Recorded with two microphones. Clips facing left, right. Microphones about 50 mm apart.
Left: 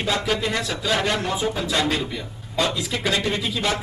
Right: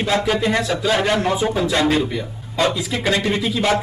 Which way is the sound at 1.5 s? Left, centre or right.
Right.